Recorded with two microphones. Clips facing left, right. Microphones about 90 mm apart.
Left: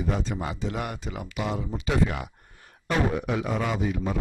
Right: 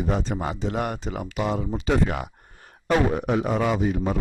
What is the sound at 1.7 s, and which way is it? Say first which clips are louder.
Speech: right 1 dB; 35° right (ahead or behind).